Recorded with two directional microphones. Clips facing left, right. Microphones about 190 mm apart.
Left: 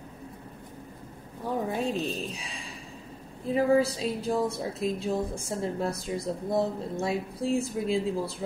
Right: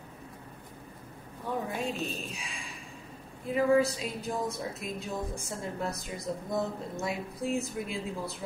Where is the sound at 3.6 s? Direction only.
35° left (ahead or behind).